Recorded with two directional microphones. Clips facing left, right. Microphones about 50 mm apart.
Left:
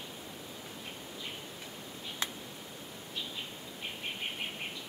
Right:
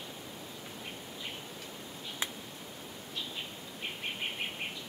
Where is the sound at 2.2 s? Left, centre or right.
Right.